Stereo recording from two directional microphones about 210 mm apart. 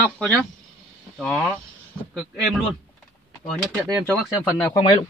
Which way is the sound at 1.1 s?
5° left (ahead or behind).